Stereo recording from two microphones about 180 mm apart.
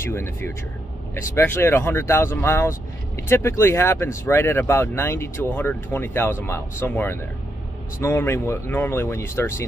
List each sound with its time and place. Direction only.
0.0 s speech: 10° left (ahead or behind)